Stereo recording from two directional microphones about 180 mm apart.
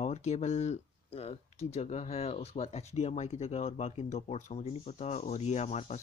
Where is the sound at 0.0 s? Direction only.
35° left (ahead or behind).